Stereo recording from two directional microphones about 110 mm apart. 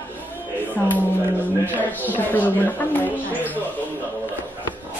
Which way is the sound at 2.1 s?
15° left (ahead or behind).